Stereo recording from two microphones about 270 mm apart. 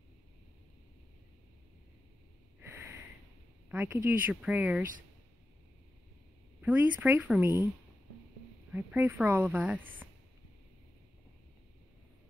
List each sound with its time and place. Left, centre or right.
2.6 s sniff: centre
3.6 s speech: centre
6.6 s speech: centre
8.7 s speech: centre